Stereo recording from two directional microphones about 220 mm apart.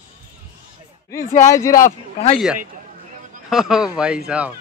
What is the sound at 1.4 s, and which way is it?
Speech, 15° left (ahead or behind).